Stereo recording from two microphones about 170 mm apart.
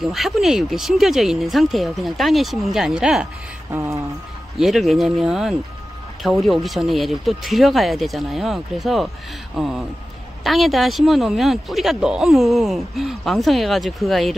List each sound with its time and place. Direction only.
0.0 s speech: centre (ahead or behind)
3.7 s a sound: 15° right (ahead or behind)
4.6 s speech: centre (ahead or behind)